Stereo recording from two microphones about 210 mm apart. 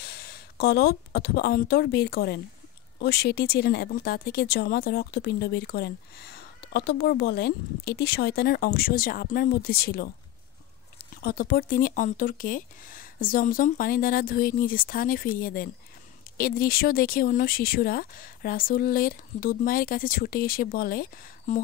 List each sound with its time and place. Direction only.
0.0 s speech: 50° left (ahead or behind)
11.2 s speech: 45° left (ahead or behind)